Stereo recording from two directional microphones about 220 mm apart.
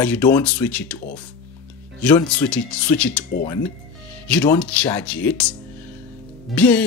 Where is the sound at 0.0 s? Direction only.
5° left (ahead or behind).